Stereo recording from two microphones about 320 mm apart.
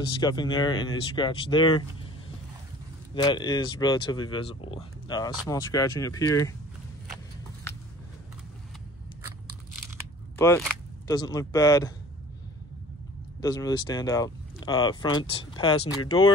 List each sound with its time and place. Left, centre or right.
0.2 s speech: centre
3.2 s speech: centre
10.3 s speech: centre
13.4 s speech: centre